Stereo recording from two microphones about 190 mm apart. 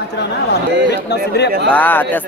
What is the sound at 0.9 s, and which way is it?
Speech, 60° left (ahead or behind).